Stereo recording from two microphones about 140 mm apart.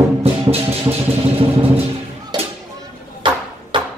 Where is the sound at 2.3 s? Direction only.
30° right (ahead or behind).